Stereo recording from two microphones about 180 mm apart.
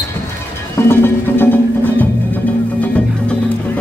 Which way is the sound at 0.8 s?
10° left (ahead or behind).